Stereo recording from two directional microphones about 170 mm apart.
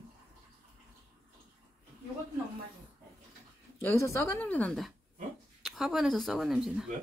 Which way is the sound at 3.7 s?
15° left (ahead or behind).